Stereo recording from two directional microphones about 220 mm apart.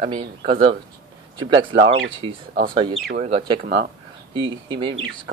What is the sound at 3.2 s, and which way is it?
Speech, 25° right (ahead or behind).